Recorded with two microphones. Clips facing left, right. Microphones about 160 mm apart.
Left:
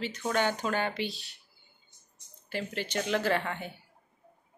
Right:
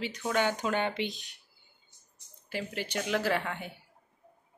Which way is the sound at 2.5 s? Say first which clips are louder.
Left 1 dB; 10° right (ahead or behind).